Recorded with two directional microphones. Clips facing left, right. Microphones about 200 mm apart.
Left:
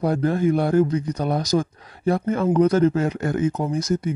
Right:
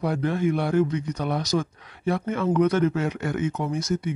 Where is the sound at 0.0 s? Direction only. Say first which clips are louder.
Left 4 dB; 40° left (ahead or behind).